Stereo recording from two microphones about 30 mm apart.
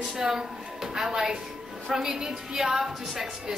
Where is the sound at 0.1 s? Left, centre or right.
Centre.